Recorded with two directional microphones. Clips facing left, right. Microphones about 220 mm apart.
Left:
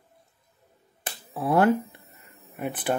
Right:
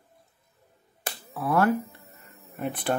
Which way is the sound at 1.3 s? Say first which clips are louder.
Left 3 dB; 25° left (ahead or behind).